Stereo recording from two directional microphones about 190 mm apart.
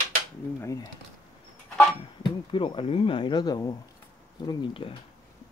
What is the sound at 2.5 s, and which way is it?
Speech, 25° left (ahead or behind).